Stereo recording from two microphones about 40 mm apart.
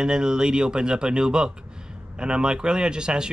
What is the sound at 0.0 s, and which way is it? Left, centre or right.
Speech, centre.